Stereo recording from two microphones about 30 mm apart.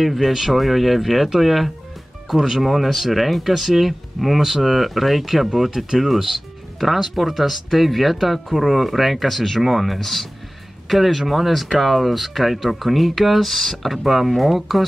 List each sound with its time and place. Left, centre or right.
0.0 s speech: centre
2.3 s speech: centre
2.6 s speech: centre